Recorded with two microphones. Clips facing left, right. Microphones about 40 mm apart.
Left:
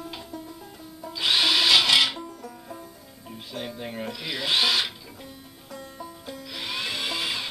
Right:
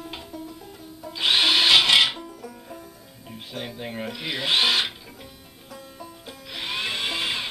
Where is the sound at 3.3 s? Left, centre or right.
Centre.